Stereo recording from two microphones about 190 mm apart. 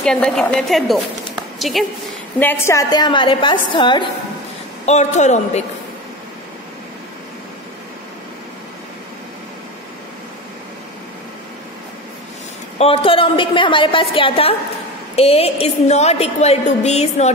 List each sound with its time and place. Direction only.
0.0 s a woman's voice: 5° left (ahead or behind)
2.3 s a woman's voice: 10° left (ahead or behind)
4.8 s a woman's voice: 35° left (ahead or behind)
12.7 s a woman's voice: 30° left (ahead or behind)